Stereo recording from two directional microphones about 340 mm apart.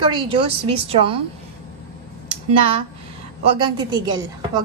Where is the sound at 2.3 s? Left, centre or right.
Centre.